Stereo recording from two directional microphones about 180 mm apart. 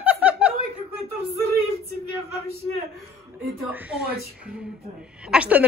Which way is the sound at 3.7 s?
10° right (ahead or behind).